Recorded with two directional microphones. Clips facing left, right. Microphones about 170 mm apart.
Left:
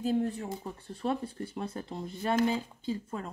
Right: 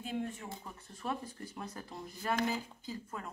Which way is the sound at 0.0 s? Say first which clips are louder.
Left 9 dB; 40° left (ahead or behind).